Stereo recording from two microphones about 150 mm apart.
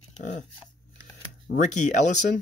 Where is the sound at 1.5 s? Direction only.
55° left (ahead or behind).